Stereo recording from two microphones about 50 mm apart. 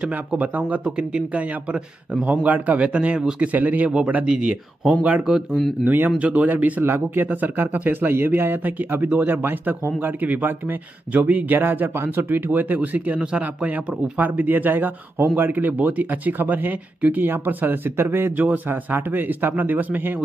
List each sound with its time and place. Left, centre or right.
0.3 s speech: right
4.1 s speech: right
5.9 s speech: right
6.8 s speech: right